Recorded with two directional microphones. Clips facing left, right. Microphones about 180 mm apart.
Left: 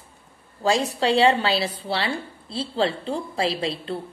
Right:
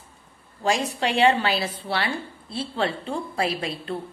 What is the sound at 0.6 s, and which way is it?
A woman's voice, 30° left (ahead or behind).